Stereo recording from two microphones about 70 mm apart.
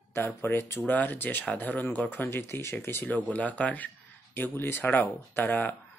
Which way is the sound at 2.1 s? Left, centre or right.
Left.